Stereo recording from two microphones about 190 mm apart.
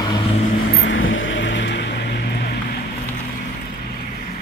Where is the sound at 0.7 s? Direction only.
75° left (ahead or behind); by 2.8 s 55° left (ahead or behind).